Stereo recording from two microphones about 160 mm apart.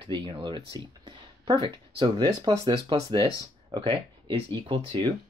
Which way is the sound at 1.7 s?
30° right (ahead or behind).